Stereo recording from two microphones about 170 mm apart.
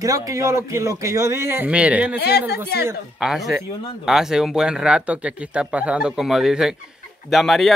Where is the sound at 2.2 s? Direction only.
70° left (ahead or behind).